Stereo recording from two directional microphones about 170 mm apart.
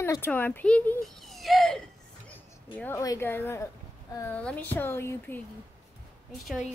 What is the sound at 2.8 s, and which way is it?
A woman's voice, 15° left (ahead or behind).